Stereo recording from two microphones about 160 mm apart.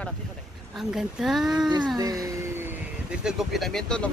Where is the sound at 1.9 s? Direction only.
20° right (ahead or behind).